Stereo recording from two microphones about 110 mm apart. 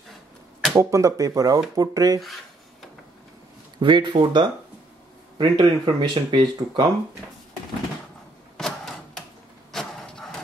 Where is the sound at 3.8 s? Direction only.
45° right (ahead or behind).